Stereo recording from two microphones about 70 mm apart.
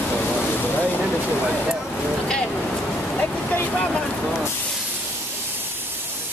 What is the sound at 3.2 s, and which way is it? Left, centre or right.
Vehicle, left.